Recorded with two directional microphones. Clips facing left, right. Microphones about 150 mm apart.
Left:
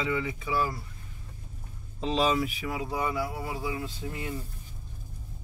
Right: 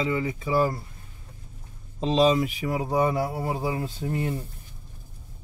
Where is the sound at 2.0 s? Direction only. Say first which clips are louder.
Right 5 dB; 30° right (ahead or behind).